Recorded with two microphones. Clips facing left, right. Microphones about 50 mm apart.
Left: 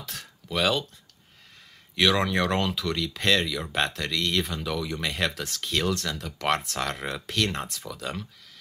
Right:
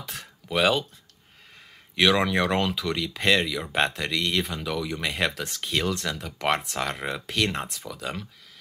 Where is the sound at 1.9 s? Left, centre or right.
Centre.